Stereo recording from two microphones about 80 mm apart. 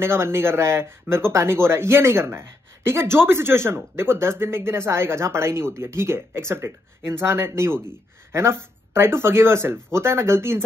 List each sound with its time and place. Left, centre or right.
0.0 s speech: right